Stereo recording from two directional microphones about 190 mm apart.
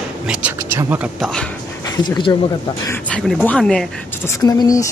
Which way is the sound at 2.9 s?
5° left (ahead or behind).